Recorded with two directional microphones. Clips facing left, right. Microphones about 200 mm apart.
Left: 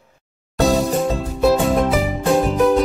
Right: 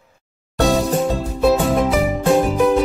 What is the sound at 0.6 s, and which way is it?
Music, centre (ahead or behind).